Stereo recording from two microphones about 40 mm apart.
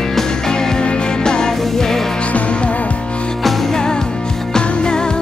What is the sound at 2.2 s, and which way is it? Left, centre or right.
Music, left.